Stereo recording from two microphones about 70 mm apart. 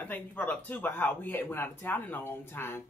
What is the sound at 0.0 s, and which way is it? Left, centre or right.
Speech, left.